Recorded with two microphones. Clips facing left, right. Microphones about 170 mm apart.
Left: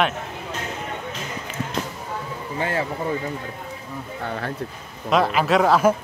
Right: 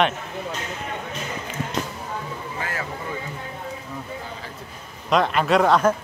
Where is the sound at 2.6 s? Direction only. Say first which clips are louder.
Left 7 dB; 30° left (ahead or behind).